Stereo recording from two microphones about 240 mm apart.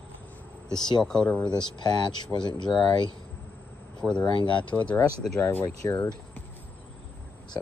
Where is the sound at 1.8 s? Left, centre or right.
Centre.